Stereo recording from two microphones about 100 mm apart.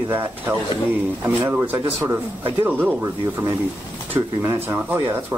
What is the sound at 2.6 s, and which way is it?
Speech, 20° right (ahead or behind).